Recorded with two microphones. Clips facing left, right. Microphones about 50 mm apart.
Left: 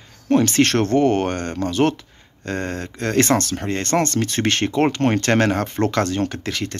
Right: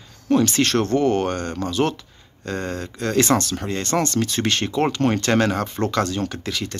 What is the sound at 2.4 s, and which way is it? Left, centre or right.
Speech, left.